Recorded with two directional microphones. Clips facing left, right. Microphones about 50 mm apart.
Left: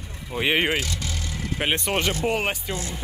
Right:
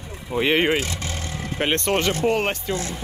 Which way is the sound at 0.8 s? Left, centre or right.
Right.